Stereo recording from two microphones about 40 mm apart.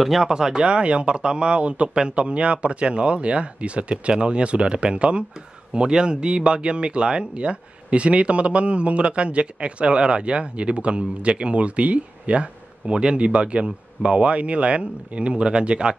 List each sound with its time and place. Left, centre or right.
0.2 s speech: centre